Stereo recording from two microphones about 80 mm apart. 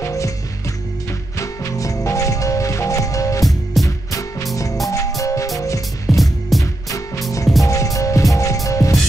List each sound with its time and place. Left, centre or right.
0.0 s music: left
1.4 s music: left
6.0 s music: centre
6.6 s music: left